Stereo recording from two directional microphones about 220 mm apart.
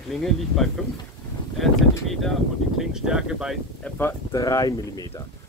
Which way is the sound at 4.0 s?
15° left (ahead or behind).